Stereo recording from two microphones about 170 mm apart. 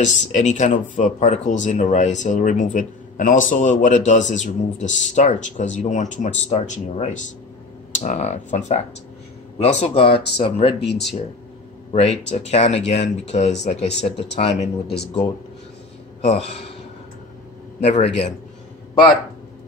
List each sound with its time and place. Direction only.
0.0 s speech: 45° left (ahead or behind)
10.8 s speech: 85° left
11.9 s speech: 40° left (ahead or behind)
16.2 s a man's voice: 40° left (ahead or behind)
17.7 s speech: 40° left (ahead or behind)